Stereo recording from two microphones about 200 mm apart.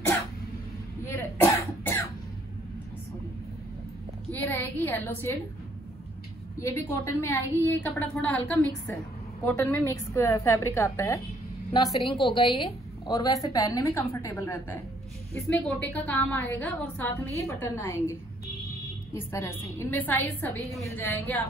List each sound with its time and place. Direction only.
1.0 s cough: 15° left (ahead or behind)
4.3 s a woman's voice: 10° left (ahead or behind)
6.6 s a woman's voice: 10° left (ahead or behind)
12.1 s a woman's voice: 25° left (ahead or behind)
19.1 s a woman's voice: 15° left (ahead or behind)